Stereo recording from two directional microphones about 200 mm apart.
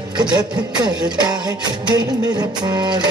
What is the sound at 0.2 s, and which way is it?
Music, 20° right (ahead or behind).